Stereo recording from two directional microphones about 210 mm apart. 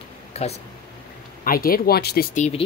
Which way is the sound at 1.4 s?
45° left (ahead or behind).